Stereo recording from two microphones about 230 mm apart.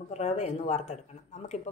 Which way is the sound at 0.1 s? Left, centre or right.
Left.